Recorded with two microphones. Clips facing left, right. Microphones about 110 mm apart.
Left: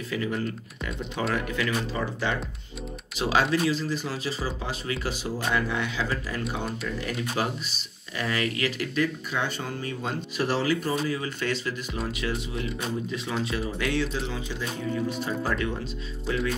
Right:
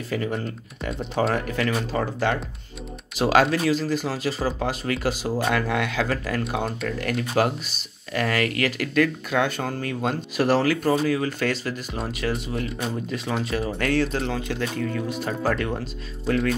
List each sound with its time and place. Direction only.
0.1 s speech: 45° right (ahead or behind)
3.4 s a man's voice: 60° right (ahead or behind); by 5.4 s 45° right (ahead or behind)
5.4 s a man's voice: 70° right (ahead or behind); by 15.8 s 50° right (ahead or behind)